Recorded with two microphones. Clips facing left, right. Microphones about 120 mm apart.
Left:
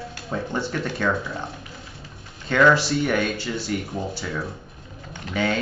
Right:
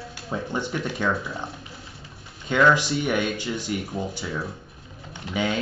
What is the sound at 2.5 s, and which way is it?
Speech, 15° right (ahead or behind).